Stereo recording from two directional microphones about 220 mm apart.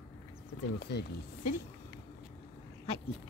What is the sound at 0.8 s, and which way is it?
Speech, 50° left (ahead or behind).